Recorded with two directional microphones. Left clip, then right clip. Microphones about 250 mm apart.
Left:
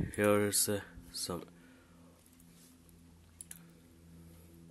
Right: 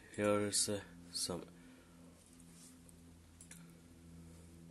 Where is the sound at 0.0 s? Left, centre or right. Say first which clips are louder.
Left 6 dB; left.